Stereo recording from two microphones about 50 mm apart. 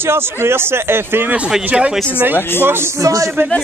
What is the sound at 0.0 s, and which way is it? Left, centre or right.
A man's voice, right.